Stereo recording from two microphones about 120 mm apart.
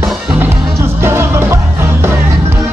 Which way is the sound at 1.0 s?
20° right (ahead or behind).